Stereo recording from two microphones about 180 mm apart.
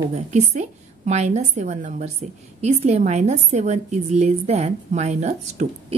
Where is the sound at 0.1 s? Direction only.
40° right (ahead or behind).